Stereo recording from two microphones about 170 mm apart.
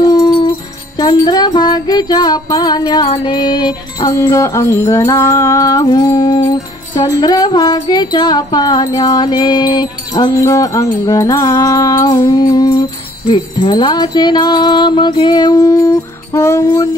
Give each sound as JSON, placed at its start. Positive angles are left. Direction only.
{"t": 0.0, "sound": "dog", "side_deg": 25}
{"t": 0.9, "sound": "music", "side_deg": 25}